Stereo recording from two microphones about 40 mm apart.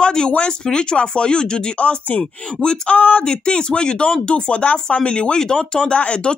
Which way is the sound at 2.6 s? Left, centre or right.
Centre.